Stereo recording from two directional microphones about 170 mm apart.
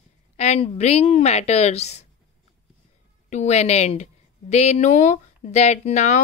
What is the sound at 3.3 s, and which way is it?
Speech, 40° left (ahead or behind).